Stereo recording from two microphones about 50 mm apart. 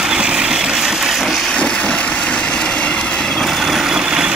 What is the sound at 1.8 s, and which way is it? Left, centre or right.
Vehicle, left.